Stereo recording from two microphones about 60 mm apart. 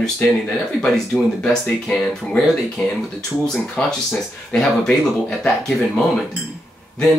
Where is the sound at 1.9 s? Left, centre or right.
Centre.